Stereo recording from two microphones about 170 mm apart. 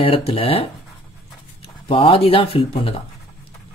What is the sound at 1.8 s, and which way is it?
Speech, 30° left (ahead or behind).